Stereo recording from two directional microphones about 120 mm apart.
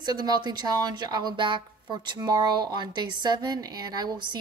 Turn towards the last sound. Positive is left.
turn(degrees=-35)  # may be behind; listen again after turning